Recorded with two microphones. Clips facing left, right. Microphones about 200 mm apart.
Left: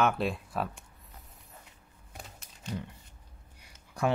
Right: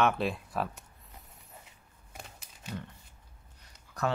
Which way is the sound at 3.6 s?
10° left (ahead or behind).